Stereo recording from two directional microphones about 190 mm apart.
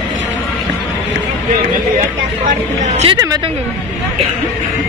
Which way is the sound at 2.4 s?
35° right (ahead or behind).